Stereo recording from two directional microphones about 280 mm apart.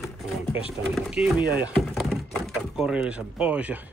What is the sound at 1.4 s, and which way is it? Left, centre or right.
Speech, right.